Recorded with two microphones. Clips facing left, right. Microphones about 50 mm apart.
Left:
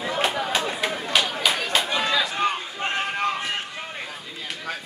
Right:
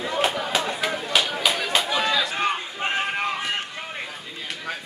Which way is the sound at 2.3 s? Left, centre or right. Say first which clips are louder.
Even; centre.